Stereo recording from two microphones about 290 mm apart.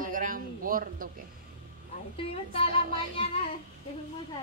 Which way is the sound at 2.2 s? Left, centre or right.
Centre.